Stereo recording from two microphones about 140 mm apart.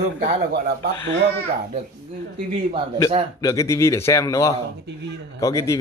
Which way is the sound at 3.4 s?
25° left (ahead or behind).